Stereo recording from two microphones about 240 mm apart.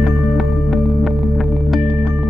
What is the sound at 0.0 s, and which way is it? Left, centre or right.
Music, centre.